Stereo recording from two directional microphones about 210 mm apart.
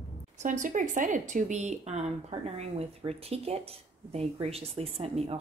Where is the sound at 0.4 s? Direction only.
35° right (ahead or behind).